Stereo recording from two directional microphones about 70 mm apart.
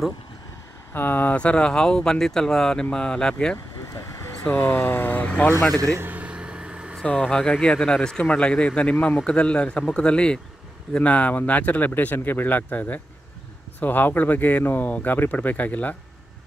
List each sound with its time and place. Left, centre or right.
0.9 s speech: left; by 3.5 s centre
4.5 s speech: left
5.2 s speech: centre
6.1 s vehicle: centre
7.2 s speech: centre